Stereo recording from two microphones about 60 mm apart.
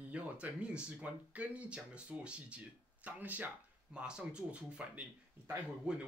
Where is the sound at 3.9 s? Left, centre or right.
Centre.